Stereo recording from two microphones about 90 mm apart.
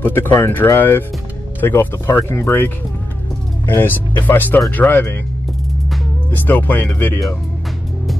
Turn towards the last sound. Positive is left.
turn(degrees=25)  # may be behind; listen again after turning